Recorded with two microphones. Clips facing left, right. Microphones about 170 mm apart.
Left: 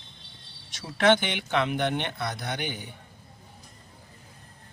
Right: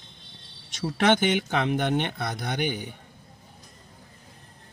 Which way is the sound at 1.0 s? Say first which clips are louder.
Even; 50° right (ahead or behind).